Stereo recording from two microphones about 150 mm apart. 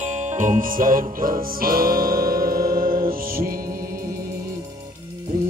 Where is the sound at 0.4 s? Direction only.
65° right (ahead or behind).